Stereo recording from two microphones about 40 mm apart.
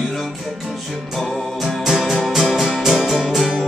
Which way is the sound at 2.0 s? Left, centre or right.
Centre.